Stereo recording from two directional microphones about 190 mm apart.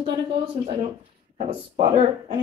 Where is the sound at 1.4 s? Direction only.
30° right (ahead or behind).